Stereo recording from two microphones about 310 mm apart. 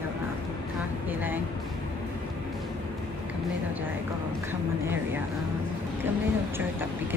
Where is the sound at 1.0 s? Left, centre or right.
Centre.